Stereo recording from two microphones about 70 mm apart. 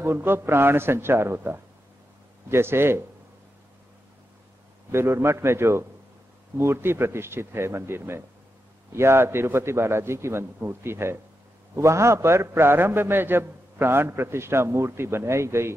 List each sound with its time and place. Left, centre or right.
0.0 s a man's voice: right
4.9 s a man's voice: right